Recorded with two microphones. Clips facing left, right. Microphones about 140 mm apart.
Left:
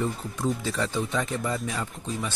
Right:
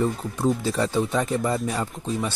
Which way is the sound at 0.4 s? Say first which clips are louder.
Right 5 dB; 35° right (ahead or behind).